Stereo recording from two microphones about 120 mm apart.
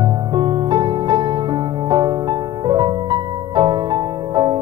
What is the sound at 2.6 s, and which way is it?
Music, 35° right (ahead or behind).